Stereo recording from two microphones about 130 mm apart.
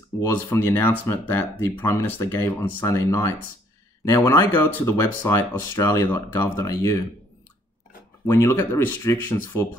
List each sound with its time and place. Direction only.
0.2 s speech: 20° left (ahead or behind)
8.3 s speech: 20° left (ahead or behind)